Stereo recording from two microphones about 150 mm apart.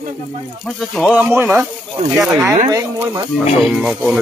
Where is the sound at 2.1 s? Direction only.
5° right (ahead or behind).